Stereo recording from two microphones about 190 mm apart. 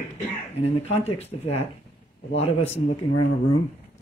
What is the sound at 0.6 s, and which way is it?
Speech, 35° left (ahead or behind).